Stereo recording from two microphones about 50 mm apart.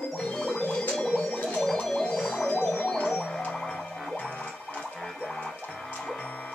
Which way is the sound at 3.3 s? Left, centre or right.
Left.